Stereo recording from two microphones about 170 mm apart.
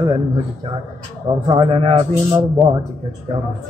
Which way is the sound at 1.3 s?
25° right (ahead or behind).